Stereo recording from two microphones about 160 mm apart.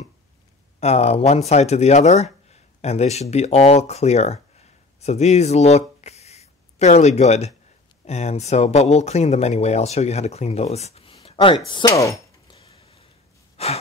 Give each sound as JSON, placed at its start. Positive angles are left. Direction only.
{"t": 0.7, "sound": "speech", "side_deg": 40}
{"t": 13.6, "sound": "gasp", "side_deg": 40}